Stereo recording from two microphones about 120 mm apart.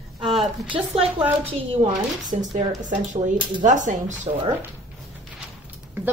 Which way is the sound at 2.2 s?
90° right.